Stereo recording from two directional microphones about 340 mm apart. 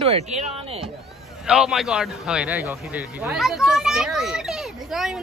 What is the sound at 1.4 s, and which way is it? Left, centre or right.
A man's voice, centre.